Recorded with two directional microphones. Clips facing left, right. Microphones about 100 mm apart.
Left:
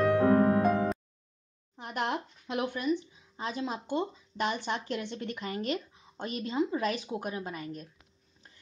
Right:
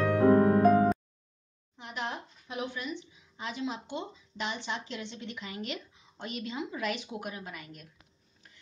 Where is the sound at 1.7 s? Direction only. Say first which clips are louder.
Left 5 dB; 50° left (ahead or behind).